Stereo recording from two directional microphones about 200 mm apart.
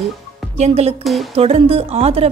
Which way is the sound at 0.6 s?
30° right (ahead or behind).